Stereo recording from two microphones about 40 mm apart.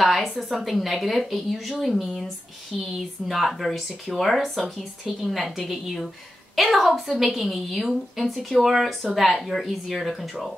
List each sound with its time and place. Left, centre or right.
0.0 s a woman's voice: centre
3.3 s a woman's voice: centre